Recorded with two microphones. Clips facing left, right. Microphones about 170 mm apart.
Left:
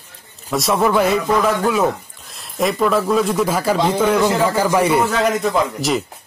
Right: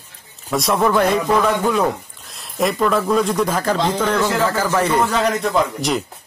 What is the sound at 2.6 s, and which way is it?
A man's voice, centre (ahead or behind).